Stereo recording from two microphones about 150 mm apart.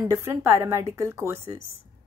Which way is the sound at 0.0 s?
20° right (ahead or behind).